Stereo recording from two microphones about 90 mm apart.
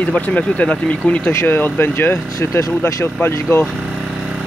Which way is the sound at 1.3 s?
25° left (ahead or behind).